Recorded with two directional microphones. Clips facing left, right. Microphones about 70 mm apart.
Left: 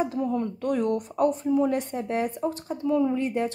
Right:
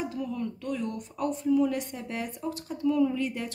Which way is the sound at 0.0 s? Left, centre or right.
Left.